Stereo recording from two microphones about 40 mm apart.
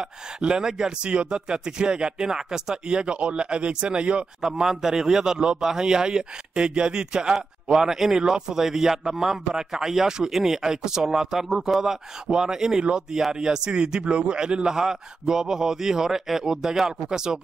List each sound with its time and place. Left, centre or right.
0.0 s a man's voice: right